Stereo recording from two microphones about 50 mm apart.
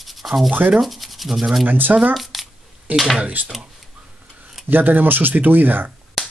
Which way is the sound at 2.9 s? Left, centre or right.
Right.